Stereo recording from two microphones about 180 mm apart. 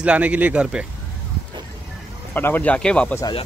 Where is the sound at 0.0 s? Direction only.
5° right (ahead or behind).